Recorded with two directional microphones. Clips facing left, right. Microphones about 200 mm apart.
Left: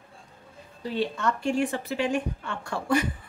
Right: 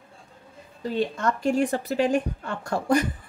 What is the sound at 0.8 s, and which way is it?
A woman's voice, 45° right (ahead or behind).